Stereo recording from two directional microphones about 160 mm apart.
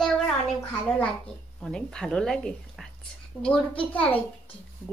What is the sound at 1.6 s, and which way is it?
A woman's voice, 5° left (ahead or behind).